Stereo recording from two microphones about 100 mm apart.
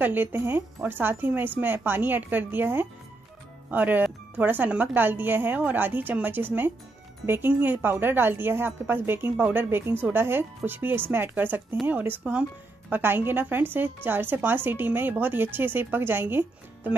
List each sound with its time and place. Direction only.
0.0 s speech: 20° right (ahead or behind)